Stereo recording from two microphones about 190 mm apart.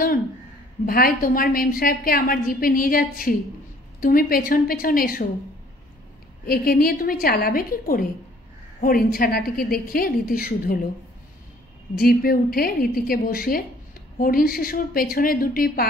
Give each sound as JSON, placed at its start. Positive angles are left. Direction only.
{"t": 0.8, "sound": "a woman's voice", "side_deg": 50}
{"t": 6.4, "sound": "a woman's voice", "side_deg": 50}
{"t": 12.0, "sound": "a woman's voice", "side_deg": 50}